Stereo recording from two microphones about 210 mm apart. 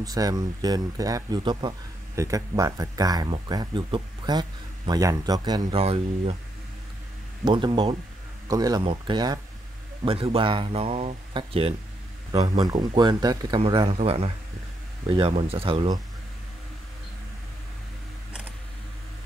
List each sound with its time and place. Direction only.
0.0 s speech: 15° right (ahead or behind)
7.4 s speech: 20° right (ahead or behind)